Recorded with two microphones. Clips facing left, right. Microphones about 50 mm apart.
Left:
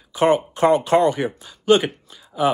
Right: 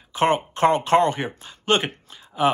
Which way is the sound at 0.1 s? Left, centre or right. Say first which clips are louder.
Left 3 dB; right.